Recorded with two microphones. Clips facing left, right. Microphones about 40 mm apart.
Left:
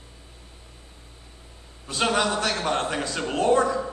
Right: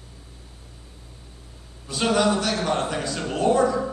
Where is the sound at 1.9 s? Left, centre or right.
Left.